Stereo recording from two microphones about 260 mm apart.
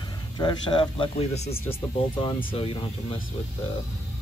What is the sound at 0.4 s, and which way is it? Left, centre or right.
Speech, centre.